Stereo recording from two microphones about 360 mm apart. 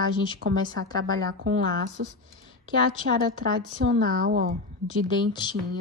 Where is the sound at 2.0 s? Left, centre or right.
Right.